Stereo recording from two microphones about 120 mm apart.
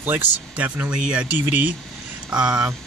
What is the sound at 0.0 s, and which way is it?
Speech, 15° right (ahead or behind).